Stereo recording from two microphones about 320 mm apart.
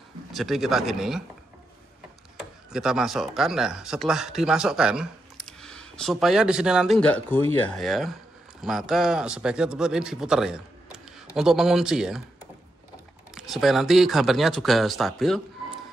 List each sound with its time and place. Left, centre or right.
0.3 s speech: centre
2.3 s speech: centre
13.3 s speech: centre